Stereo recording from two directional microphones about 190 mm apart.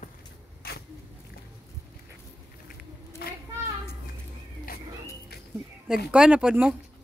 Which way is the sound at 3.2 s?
55° left (ahead or behind).